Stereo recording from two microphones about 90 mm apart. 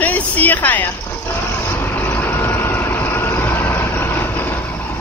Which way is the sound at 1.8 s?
25° left (ahead or behind).